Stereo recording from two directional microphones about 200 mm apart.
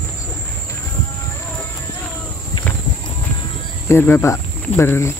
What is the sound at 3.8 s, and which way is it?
Speech, 10° left (ahead or behind).